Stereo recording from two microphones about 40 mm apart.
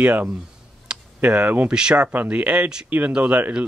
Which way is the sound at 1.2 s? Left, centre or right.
Right.